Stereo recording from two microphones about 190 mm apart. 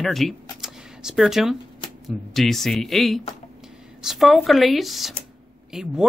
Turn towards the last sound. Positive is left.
turn(degrees=-5)  # may be behind; listen again after turning